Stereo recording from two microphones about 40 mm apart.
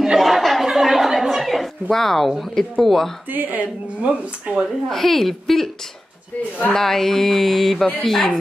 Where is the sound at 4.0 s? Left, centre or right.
Right.